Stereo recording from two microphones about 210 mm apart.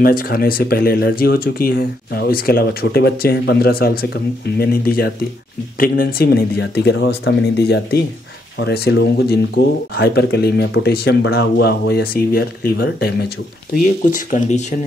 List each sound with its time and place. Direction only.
0.0 s speech: 45° left (ahead or behind)
13.7 s speech: 40° left (ahead or behind)